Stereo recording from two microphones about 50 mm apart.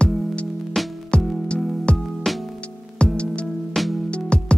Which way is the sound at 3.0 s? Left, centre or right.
Centre.